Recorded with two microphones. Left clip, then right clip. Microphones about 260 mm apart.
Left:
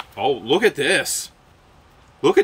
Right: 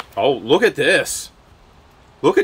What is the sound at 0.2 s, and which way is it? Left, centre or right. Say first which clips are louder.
Speech: right 3 dB; centre.